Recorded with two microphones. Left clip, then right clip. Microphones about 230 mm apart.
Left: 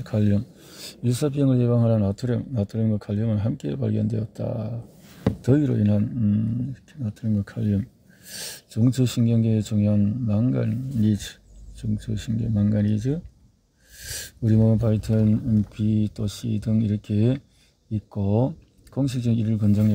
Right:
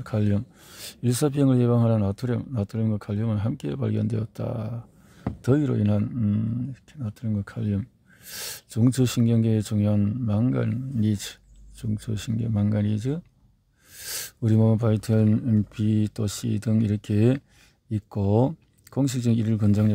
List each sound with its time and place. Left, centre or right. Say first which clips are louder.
0.0 s speech: left 2 dB; centre